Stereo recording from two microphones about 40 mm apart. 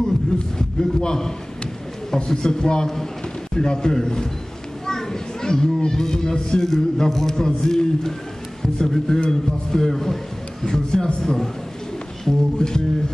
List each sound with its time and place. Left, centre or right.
0.6 s a man's voice: centre
12.3 s a man's voice: centre